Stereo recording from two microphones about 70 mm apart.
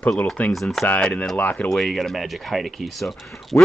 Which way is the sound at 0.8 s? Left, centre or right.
Centre.